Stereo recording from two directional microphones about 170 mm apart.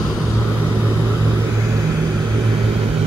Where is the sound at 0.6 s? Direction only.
10° right (ahead or behind).